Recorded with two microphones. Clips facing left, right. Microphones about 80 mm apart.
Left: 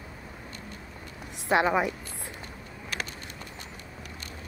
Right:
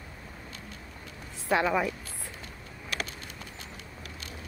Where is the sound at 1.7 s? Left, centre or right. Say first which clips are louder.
Left 2 dB; left.